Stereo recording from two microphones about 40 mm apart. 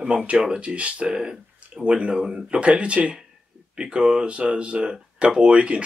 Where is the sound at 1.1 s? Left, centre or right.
Centre.